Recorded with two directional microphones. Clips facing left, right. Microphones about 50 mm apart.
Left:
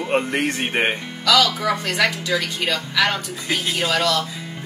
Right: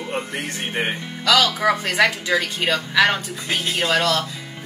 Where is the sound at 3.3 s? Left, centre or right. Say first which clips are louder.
Even; centre.